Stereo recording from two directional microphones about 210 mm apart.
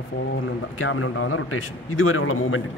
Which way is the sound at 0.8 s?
75° left (ahead or behind).